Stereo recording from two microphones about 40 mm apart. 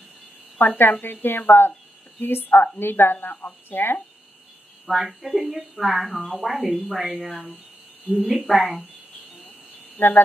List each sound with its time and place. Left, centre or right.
0.6 s speech: left
4.8 s a woman's voice: centre
9.9 s speech: left